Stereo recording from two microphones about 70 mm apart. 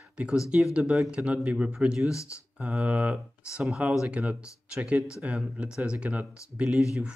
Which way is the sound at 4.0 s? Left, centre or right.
Centre.